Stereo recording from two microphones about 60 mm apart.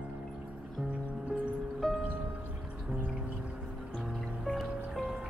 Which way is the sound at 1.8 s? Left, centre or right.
Centre.